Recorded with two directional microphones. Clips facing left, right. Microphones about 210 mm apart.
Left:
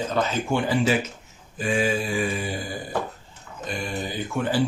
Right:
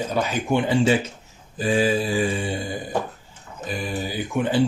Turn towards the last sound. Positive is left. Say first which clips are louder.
# right 3 dB
turn(degrees=-20)  # may be behind; listen again after turning